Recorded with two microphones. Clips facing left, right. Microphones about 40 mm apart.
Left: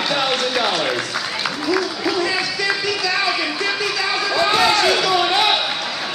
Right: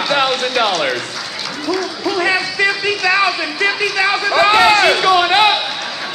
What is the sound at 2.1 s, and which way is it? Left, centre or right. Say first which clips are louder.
Speech: right 9 dB; right.